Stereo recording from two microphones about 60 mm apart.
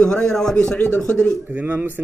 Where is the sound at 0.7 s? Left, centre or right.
Centre.